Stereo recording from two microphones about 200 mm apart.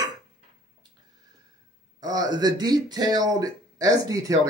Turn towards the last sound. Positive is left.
turn(degrees=-15)  # may be behind; listen again after turning